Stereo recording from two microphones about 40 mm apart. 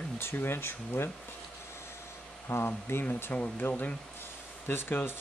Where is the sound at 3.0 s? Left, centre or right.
Left.